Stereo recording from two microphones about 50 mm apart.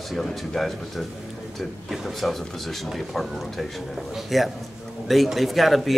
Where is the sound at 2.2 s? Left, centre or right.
Centre.